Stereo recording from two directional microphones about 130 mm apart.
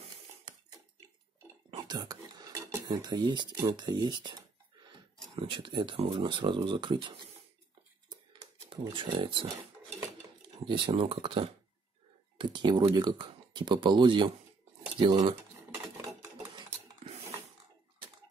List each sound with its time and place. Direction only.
1.7 s speech: 35° right (ahead or behind)
8.6 s speech: 40° right (ahead or behind)
10.6 s speech: 40° right (ahead or behind)